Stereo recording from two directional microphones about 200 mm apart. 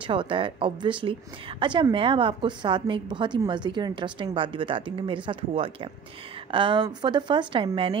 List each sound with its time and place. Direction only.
0.0 s a woman's voice: 25° right (ahead or behind)